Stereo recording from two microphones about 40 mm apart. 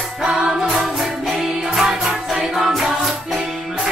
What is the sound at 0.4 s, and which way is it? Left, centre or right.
Music, right.